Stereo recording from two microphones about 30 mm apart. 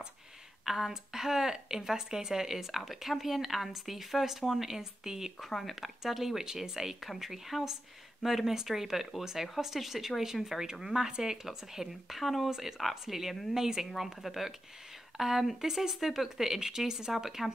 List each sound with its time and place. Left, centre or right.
0.7 s speech: centre
5.5 s speech: centre
5.8 s speech: centre
11.1 s speech: right
11.4 s speech: centre
12.2 s speech: centre
12.4 s speech: centre
13.6 s speech: centre
13.9 s speech: centre
17.1 s speech: centre